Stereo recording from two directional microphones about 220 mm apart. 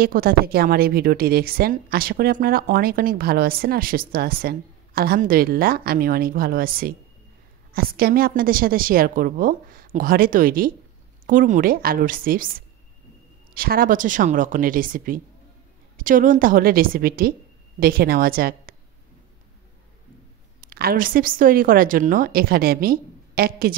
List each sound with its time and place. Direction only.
0.0 s a woman's voice: 40° right (ahead or behind)
20.6 s a woman's voice: 45° right (ahead or behind)